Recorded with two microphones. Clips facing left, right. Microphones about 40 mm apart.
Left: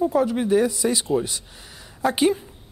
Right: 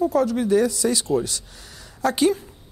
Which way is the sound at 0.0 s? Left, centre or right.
Centre.